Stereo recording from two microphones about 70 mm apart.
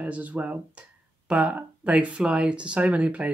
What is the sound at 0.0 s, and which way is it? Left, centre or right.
Speech, right.